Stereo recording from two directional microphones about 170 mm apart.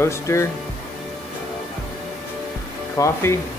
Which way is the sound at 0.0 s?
15° left (ahead or behind).